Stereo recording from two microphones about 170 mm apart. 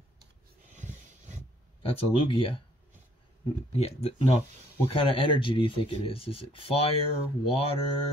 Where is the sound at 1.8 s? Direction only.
35° left (ahead or behind).